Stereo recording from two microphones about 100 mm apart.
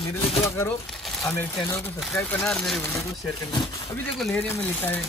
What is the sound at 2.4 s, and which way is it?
Speech, 5° left (ahead or behind).